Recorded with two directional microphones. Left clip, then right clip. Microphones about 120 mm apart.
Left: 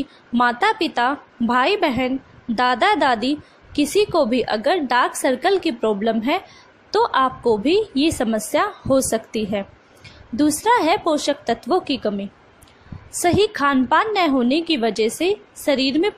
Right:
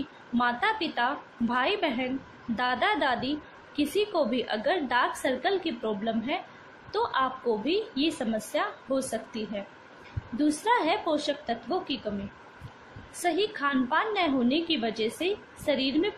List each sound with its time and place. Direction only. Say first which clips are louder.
0.3 s a woman's voice: left 9 dB; 80° left
10.3 s a woman's voice: left 8 dB; 70° left (ahead or behind); by 12.0 s 90° left
13.2 s a woman's voice: left 10 dB; 90° left; by 16.1 s 75° left (ahead or behind)